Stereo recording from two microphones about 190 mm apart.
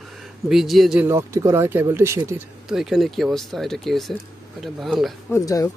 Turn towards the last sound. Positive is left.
turn(degrees=15)  # may be behind; listen again after turning